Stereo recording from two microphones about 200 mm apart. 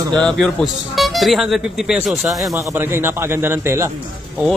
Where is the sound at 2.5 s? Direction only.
15° right (ahead or behind).